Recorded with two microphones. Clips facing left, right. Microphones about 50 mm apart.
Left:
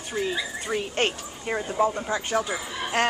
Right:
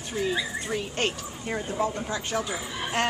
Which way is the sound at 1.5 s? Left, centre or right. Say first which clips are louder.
Left 4 dB; centre.